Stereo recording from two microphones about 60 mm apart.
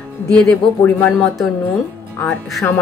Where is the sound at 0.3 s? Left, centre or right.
Centre.